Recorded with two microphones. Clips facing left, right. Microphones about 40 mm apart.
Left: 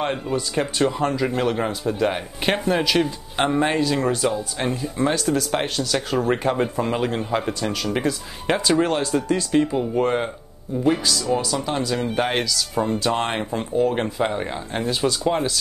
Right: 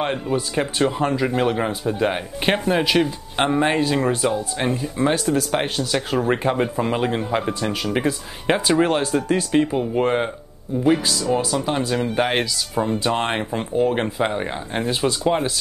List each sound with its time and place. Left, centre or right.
0.0 s speech: centre
1.7 s speech: right
2.0 s speech: centre
14.8 s speech: right